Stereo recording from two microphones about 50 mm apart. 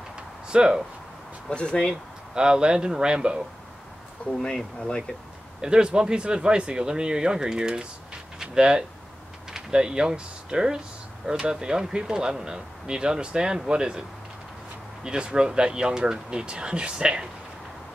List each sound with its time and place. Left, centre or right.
0.5 s speech: centre
1.5 s speech: centre
2.3 s speech: centre
4.3 s speech: centre
5.6 s speech: centre
8.4 s a sound: centre
9.5 s speech: centre
15.0 s speech: centre